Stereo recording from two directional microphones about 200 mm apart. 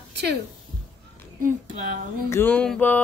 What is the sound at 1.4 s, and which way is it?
Speech, 40° right (ahead or behind).